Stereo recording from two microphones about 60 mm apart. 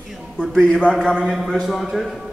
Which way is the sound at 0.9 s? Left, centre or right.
Centre.